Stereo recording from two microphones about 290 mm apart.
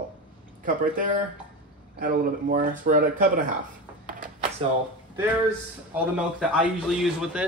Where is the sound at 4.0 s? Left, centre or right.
Right.